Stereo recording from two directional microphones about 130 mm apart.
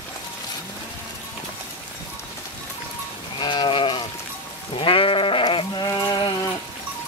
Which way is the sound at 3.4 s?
35° left (ahead or behind).